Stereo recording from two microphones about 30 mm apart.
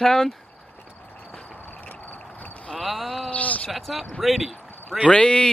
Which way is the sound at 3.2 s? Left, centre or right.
Left.